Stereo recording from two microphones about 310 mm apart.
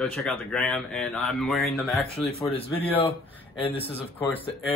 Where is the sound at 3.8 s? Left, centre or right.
Centre.